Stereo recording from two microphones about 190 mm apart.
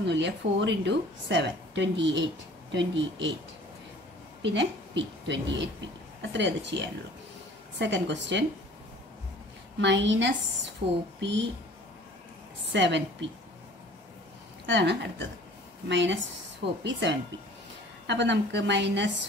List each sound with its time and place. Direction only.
0.0 s a woman's voice: 65° right (ahead or behind)
4.4 s a woman's voice: 70° right (ahead or behind)
7.8 s a woman's voice: 65° right (ahead or behind)
9.8 s a woman's voice: 65° right (ahead or behind)
12.7 s a woman's voice: 70° right (ahead or behind)
14.7 s a woman's voice: 65° right (ahead or behind)